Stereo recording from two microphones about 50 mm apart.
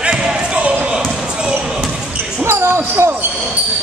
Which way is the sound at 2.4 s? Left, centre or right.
Right.